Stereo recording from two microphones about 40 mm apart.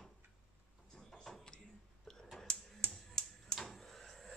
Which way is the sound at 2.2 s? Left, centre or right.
Centre.